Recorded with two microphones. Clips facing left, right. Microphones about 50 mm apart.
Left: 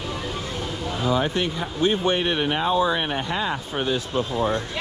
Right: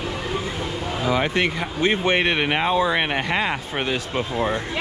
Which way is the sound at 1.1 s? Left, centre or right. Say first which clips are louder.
Right 2 dB; right.